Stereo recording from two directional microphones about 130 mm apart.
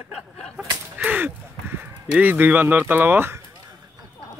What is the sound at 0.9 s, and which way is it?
Speech, 10° right (ahead or behind).